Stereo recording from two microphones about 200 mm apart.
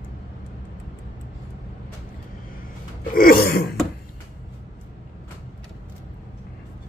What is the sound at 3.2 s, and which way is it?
Throat clearing, 45° left (ahead or behind).